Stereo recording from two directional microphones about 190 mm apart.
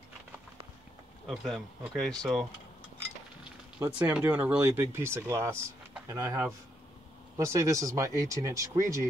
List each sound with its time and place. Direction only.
1.2 s speech: centre (ahead or behind)
3.8 s speech: 10° right (ahead or behind)